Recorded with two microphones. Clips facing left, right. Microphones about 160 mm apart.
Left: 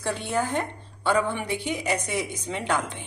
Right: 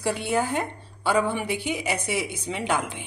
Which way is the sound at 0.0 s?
10° right (ahead or behind).